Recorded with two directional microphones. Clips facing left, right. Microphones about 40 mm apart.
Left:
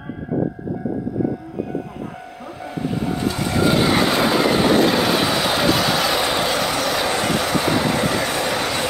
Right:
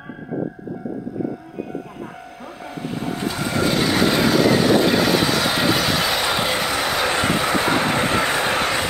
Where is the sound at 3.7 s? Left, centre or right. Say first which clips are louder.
Right 1 dB; left.